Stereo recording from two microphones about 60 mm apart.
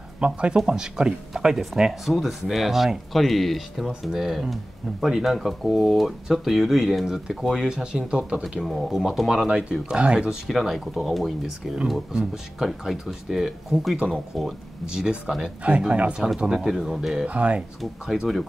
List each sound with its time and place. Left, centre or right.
0.2 s speech: centre
9.5 s speech: centre
10.4 s speech: centre
12.1 s speech: centre
16.5 s speech: centre
17.3 s speech: right
18.0 s speech: centre